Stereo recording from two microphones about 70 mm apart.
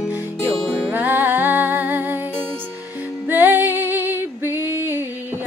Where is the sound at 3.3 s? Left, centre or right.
Right.